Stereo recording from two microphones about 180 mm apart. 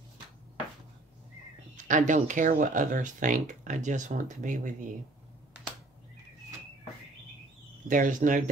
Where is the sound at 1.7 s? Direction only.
45° right (ahead or behind).